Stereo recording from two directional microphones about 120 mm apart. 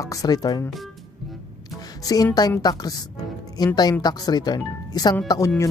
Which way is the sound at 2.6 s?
30° left (ahead or behind).